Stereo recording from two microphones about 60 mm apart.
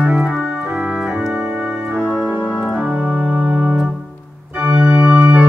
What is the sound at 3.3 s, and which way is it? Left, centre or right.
Organ, right.